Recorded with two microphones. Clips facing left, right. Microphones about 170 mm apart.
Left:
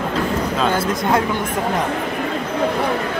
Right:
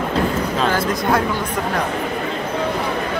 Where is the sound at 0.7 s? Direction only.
25° left (ahead or behind).